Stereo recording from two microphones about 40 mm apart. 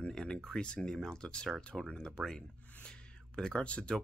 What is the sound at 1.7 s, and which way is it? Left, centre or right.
Speech, centre.